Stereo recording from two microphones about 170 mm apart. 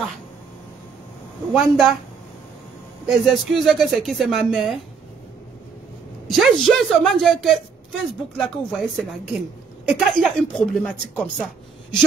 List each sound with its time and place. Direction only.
1.5 s a woman's voice: 5° right (ahead or behind)
3.1 s a woman's voice: centre (ahead or behind)
6.2 s a woman's voice: centre (ahead or behind)